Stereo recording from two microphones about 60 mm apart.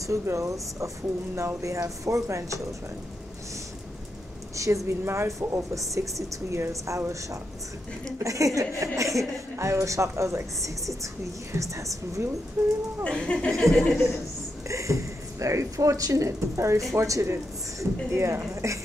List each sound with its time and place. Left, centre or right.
0.0 s speech: right
4.6 s speech: right
5.0 s speech: right
5.8 s speech: right
12.6 s speech: centre
13.0 s speech: centre
13.5 s chuckle: centre
14.7 s speech: right